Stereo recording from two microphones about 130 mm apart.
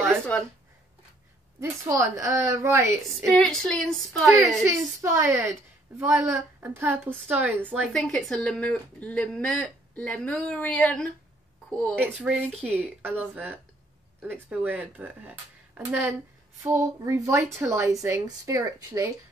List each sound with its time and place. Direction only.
0.3 s a woman's voice: 10° left (ahead or behind)
1.6 s a woman's voice: 25° right (ahead or behind)
3.3 s a woman's voice: 5° left (ahead or behind)
4.6 s a woman's voice: 20° right (ahead or behind)
7.7 s speech: 5° left (ahead or behind)
12.0 s speech: 5° right (ahead or behind)
16.6 s a woman's voice: 25° right (ahead or behind)